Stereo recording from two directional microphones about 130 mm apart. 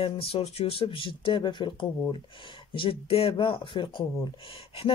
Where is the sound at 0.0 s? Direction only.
45° left (ahead or behind).